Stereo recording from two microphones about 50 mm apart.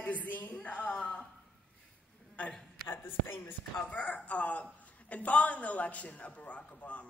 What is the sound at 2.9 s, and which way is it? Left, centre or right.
Speech, left.